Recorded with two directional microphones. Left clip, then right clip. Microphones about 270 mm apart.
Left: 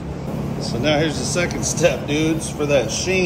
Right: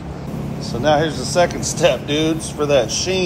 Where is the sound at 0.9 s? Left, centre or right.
Centre.